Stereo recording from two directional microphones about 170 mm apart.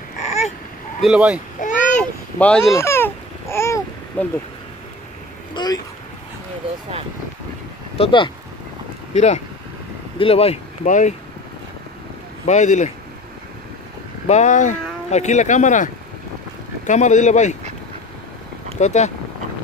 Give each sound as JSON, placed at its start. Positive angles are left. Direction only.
{"t": 0.2, "sound": "a sound", "side_deg": 40}
{"t": 1.0, "sound": "speech", "side_deg": -5}
{"t": 1.6, "sound": "a sound", "side_deg": 50}
{"t": 2.3, "sound": "speech", "side_deg": 10}
{"t": 2.7, "sound": "babbling", "side_deg": 15}
{"t": 5.5, "sound": "speech", "side_deg": 25}
{"t": 8.0, "sound": "speech", "side_deg": 30}
{"t": 9.1, "sound": "speech", "side_deg": 40}
{"t": 12.4, "sound": "speech", "side_deg": 45}
{"t": 14.2, "sound": "speech", "side_deg": 45}
{"t": 18.8, "sound": "speech", "side_deg": 45}